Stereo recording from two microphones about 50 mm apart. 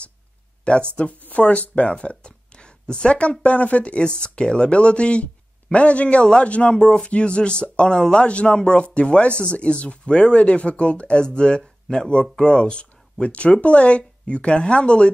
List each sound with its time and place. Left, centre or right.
0.7 s speech: left